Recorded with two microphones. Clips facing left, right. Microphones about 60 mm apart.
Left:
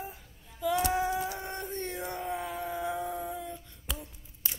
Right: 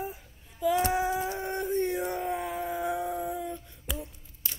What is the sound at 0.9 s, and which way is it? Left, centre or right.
Chicken, centre.